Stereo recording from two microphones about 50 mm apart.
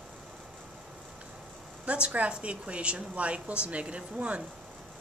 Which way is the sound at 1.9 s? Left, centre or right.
Right.